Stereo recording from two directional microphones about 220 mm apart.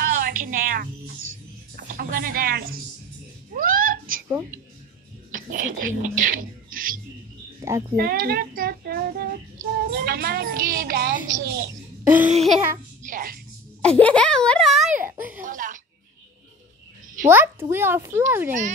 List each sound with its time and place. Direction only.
0.0 s music: 40° right (ahead or behind)
1.8 s speech: 40° right (ahead or behind)
3.5 s a sound: 40° right (ahead or behind)
5.3 s speech: 40° right (ahead or behind)
7.6 s a child's voice: 15° right (ahead or behind)
8.0 s child singing: 45° right (ahead or behind)
9.8 s a child's voice: 45° right (ahead or behind)
12.1 s speech: 5° right (ahead or behind)
13.0 s a sound: 40° right (ahead or behind)
14.0 s speech: 5° left (ahead or behind)
15.0 s children playing: 5° right (ahead or behind)
15.4 s music: 35° right (ahead or behind)
17.3 s a child's voice: 10° right (ahead or behind)